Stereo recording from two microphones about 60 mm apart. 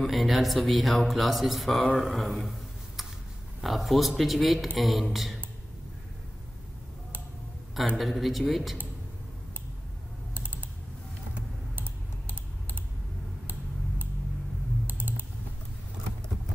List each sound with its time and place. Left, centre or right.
0.0 s speech: centre
3.6 s speech: centre
7.9 s speech: centre
10.3 s typing: right
11.7 s typing: right
14.9 s typing: right